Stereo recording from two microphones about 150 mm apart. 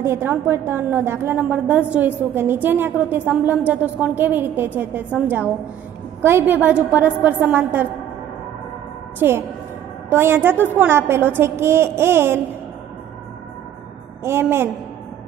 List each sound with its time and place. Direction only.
0.0 s a woman's voice: 15° right (ahead or behind)
9.2 s a woman's voice: 15° right (ahead or behind)
14.2 s a woman's voice: 15° right (ahead or behind)